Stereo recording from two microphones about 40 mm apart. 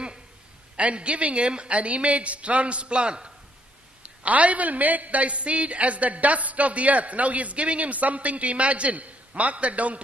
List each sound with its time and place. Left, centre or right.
0.7 s a man's voice: right
4.0 s a man's voice: right